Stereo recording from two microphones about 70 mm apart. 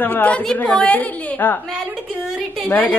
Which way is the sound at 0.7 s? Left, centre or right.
Centre.